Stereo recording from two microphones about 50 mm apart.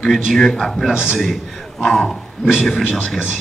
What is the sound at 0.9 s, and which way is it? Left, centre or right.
Speech, centre.